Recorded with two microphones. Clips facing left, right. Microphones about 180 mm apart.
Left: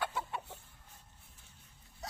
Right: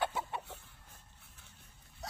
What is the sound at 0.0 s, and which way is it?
Chicken, 25° right (ahead or behind).